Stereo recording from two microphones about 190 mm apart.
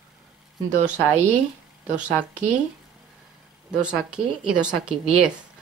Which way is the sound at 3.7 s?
5° right (ahead or behind).